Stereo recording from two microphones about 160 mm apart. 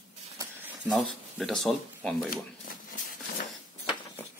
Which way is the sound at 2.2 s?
60° left (ahead or behind).